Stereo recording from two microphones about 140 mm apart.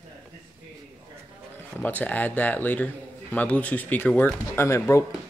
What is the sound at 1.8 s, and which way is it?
A man's voice, 10° left (ahead or behind).